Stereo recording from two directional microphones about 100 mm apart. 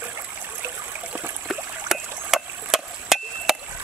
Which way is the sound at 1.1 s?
25° right (ahead or behind).